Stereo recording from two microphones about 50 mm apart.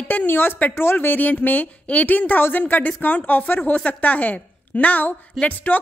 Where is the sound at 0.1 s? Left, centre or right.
Left.